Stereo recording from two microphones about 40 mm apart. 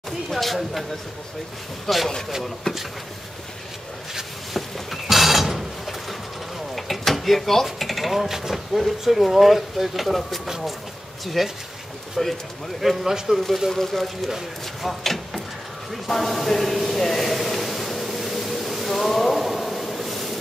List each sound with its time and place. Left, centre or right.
0.3 s speech: centre
1.9 s speech: centre
2.7 s speech: centre
4.6 s mechanisms: centre
6.7 s speech: centre
12.8 s speech: centre
13.7 s speech: centre
15.9 s a sound: centre